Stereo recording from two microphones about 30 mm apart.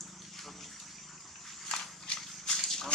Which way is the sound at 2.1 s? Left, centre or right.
Left.